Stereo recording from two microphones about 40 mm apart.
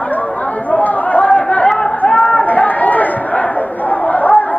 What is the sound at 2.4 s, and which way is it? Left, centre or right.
Chatter, left.